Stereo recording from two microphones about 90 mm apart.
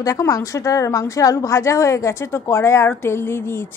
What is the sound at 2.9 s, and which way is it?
Music, 25° left (ahead or behind).